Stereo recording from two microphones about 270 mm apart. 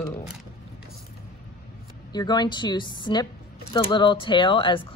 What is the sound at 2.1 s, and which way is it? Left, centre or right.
A woman's voice, centre.